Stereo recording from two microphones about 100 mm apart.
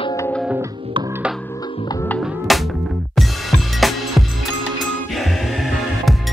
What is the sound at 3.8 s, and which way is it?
Music, centre (ahead or behind).